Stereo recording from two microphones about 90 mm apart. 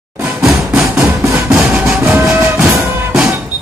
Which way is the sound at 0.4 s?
Centre (ahead or behind).